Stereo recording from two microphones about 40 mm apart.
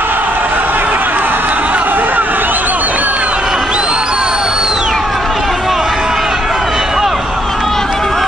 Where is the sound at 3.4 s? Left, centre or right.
Centre.